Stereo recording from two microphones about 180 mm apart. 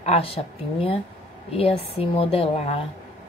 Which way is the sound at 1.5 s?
35° left (ahead or behind).